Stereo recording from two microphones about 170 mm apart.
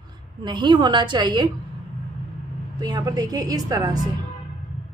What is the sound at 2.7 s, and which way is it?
A woman's voice, 20° right (ahead or behind).